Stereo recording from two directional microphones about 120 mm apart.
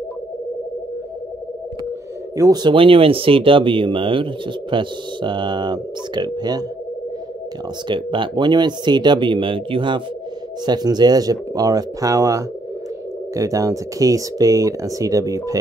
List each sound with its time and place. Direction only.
2.3 s speech: 25° right (ahead or behind)
2.6 s speech: 45° right (ahead or behind)
7.9 s speech: 40° right (ahead or behind)